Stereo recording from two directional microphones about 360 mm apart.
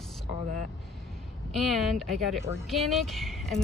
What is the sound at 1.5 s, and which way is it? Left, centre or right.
Speech, centre.